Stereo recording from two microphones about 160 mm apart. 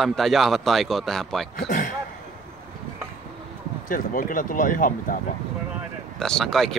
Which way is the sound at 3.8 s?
60° left (ahead or behind).